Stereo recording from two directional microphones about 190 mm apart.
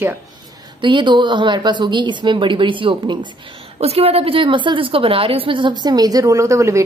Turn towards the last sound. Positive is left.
turn(degrees=-15)  # may be behind; listen again after turning